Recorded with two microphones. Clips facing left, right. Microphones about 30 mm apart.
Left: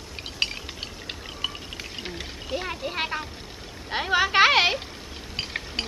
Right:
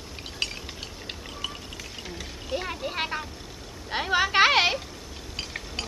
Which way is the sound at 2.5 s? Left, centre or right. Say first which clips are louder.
Even; centre.